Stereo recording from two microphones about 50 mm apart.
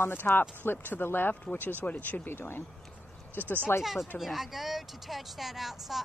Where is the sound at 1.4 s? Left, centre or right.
Left.